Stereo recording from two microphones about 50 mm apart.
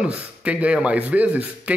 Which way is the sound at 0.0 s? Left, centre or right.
Right.